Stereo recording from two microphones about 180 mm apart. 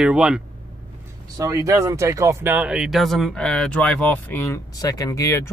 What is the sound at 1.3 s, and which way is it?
Speech, 15° right (ahead or behind).